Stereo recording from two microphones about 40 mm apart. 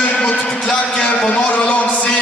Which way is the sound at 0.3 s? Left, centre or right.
Left.